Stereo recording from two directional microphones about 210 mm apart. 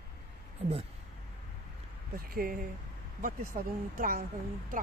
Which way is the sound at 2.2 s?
45° right (ahead or behind).